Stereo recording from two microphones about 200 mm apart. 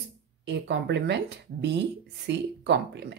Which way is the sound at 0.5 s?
60° right (ahead or behind).